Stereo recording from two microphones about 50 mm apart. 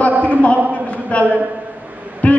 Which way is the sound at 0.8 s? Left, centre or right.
Left.